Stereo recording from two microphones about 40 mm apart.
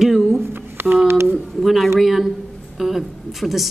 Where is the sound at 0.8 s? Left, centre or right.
Right.